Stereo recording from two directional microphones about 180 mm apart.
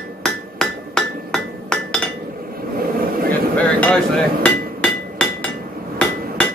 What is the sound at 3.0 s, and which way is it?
Vehicle, 55° right (ahead or behind).